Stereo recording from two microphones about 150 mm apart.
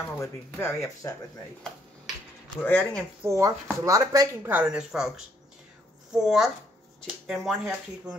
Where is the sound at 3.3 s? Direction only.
20° right (ahead or behind).